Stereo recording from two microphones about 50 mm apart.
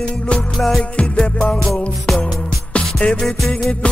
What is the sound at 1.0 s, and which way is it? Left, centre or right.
Music, centre.